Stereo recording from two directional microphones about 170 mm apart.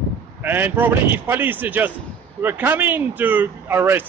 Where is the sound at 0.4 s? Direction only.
10° right (ahead or behind).